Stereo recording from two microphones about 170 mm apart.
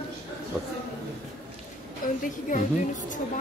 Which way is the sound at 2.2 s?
50° left (ahead or behind).